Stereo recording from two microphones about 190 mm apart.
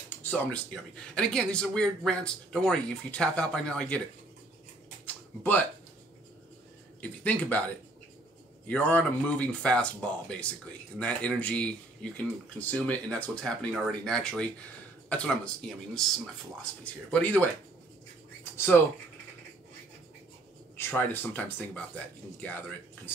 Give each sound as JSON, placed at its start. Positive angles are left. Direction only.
{"t": 0.2, "sound": "speech", "side_deg": 10}
{"t": 5.0, "sound": "a sound", "side_deg": 10}
{"t": 7.0, "sound": "speech", "side_deg": 10}
{"t": 20.7, "sound": "speech", "side_deg": 10}